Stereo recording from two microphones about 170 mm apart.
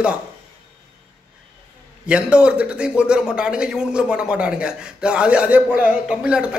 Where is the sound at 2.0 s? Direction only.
5° right (ahead or behind).